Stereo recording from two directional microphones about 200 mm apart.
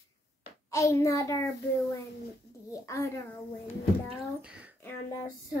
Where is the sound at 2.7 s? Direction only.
15° left (ahead or behind).